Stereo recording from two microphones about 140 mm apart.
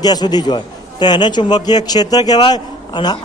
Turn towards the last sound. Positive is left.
turn(degrees=30)  # may be behind; listen again after turning